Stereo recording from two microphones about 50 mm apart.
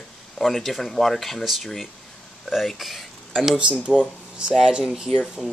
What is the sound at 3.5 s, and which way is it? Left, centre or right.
Speech, right.